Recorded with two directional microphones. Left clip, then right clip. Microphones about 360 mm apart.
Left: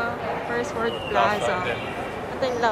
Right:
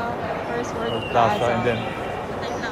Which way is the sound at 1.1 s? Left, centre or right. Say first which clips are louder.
Right 3 dB; centre.